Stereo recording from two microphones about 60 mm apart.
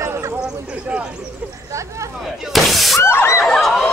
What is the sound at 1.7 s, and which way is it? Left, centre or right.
Speech, right.